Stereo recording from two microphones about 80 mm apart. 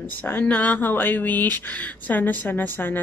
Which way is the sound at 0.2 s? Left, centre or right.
Left.